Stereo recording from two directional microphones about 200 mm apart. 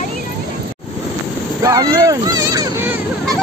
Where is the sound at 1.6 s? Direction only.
20° right (ahead or behind).